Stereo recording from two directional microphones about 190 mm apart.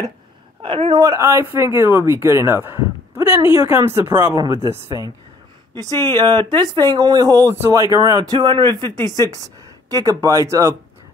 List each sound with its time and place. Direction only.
0.6 s speech: 30° right (ahead or behind)
0.9 s speech: 15° right (ahead or behind)